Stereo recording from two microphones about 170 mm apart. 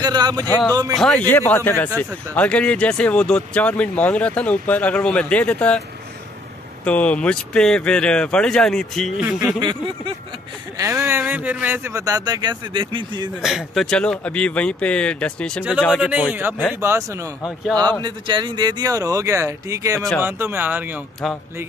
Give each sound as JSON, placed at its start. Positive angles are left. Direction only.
{"t": 0.0, "sound": "a sound", "side_deg": -25}
{"t": 0.9, "sound": "speech", "side_deg": 5}
{"t": 6.8, "sound": "speech", "side_deg": 10}
{"t": 9.6, "sound": "speech", "side_deg": -25}
{"t": 13.4, "sound": "speech", "side_deg": 0}
{"t": 16.1, "sound": "speech", "side_deg": -5}
{"t": 18.0, "sound": "speech", "side_deg": -30}